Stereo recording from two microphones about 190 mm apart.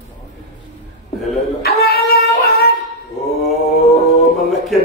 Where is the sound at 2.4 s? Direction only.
55° left (ahead or behind).